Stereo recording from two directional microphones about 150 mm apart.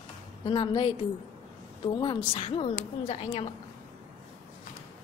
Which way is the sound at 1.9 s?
35° left (ahead or behind).